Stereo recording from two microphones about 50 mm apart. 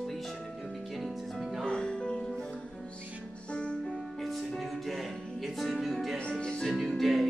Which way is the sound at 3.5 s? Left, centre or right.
Centre.